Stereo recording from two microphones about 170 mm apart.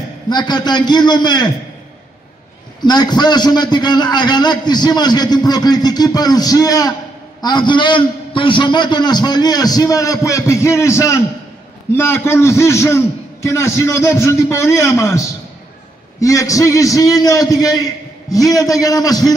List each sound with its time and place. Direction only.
0.3 s a man's voice: 25° left (ahead or behind)
2.8 s a man's voice: 25° left (ahead or behind)